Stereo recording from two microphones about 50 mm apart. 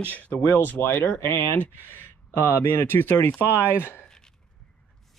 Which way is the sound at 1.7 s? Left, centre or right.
Left.